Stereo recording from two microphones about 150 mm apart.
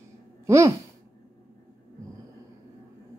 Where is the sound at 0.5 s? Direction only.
20° right (ahead or behind).